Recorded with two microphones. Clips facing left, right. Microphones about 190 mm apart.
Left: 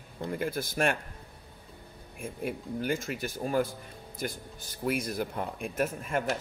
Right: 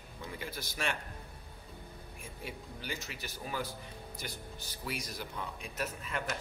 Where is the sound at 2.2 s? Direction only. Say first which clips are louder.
Left 11 dB; 55° left (ahead or behind).